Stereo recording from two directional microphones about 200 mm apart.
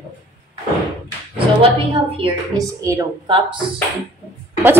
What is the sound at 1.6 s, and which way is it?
A woman's voice, 25° right (ahead or behind).